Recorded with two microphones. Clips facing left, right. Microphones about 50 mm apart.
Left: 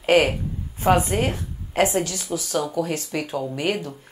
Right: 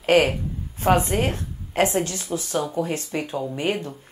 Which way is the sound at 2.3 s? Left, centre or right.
Centre.